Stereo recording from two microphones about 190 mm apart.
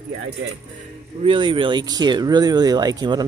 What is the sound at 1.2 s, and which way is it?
Speech, 25° right (ahead or behind).